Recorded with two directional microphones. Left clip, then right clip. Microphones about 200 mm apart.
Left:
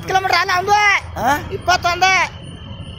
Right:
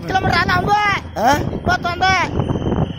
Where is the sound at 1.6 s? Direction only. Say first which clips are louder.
Left 3 dB; 5° right (ahead or behind).